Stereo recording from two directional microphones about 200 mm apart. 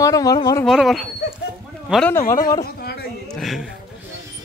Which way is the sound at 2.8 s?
50° left (ahead or behind).